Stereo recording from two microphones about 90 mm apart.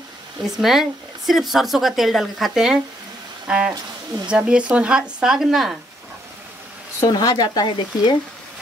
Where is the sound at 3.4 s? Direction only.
10° right (ahead or behind).